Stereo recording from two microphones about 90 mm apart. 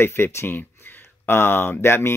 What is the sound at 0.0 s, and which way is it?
Speech, 25° left (ahead or behind).